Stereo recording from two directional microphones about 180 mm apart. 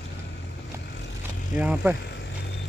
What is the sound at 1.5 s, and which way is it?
Speech, 10° right (ahead or behind).